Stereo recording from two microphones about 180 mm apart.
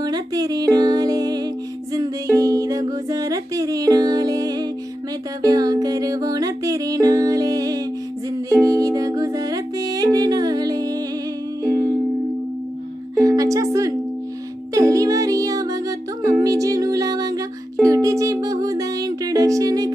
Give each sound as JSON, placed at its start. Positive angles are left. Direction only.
{"t": 0.0, "sound": "music", "side_deg": -20}
{"t": 13.1, "sound": "music", "side_deg": -20}